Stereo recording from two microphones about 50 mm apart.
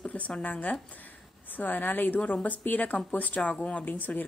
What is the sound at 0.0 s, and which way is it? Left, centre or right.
A woman's voice, left.